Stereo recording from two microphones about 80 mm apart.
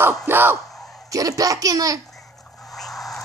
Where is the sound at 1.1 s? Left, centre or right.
Right.